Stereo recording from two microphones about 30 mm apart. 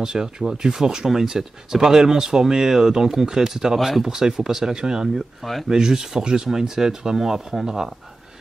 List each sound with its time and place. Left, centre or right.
0.0 s speech: right
3.7 s speech: centre
4.0 s speech: centre
5.4 s speech: centre
5.7 s speech: right